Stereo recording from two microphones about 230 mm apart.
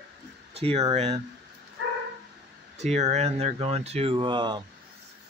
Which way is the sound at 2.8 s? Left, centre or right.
Right.